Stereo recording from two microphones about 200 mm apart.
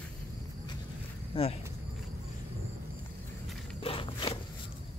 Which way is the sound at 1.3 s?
30° left (ahead or behind).